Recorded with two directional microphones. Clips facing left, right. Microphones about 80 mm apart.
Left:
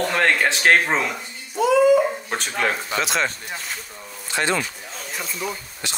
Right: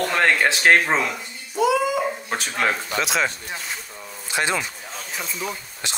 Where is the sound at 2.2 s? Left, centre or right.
Centre.